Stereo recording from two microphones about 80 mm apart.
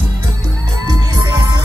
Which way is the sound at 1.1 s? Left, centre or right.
Right.